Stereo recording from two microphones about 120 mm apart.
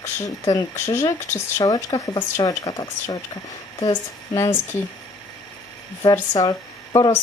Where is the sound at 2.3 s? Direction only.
30° left (ahead or behind).